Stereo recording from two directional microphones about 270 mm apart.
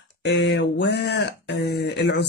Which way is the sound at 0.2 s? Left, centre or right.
Left.